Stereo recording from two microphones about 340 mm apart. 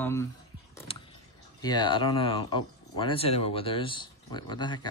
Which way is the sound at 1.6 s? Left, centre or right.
Centre.